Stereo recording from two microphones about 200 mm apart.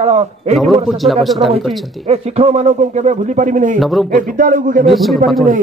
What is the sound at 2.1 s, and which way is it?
Speech, 35° right (ahead or behind).